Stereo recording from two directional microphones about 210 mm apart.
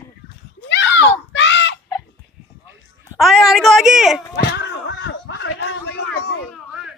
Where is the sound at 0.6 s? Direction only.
60° left (ahead or behind).